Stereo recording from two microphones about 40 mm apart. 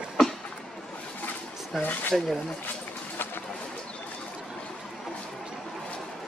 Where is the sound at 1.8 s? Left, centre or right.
Left.